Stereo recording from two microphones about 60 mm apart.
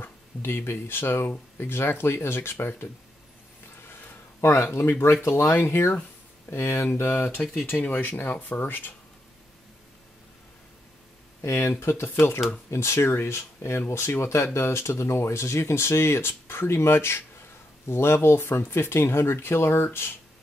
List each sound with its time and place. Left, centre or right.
0.0 s speech: left
3.8 s a sound: left
5.0 s speech: left
11.4 s speech: left